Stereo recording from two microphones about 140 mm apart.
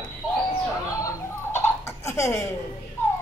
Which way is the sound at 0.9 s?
20° left (ahead or behind).